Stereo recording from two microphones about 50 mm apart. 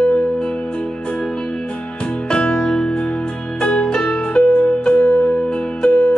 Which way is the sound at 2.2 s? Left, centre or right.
Centre.